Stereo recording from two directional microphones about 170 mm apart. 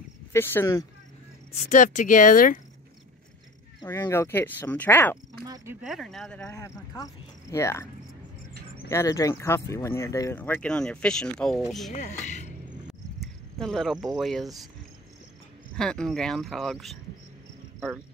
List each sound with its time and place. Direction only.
0.3 s speech: 15° left (ahead or behind)
1.5 s speech: 45° left (ahead or behind)
3.8 s speech: 15° left (ahead or behind)
5.8 s speech: centre (ahead or behind)
6.5 s speech: 20° left (ahead or behind); by 11.9 s centre (ahead or behind)
11.9 s speech: 45° left (ahead or behind)
13.2 s speech: centre (ahead or behind)
15.7 s speech: 5° left (ahead or behind)